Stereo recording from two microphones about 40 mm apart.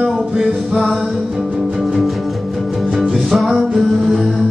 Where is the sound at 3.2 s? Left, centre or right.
Centre.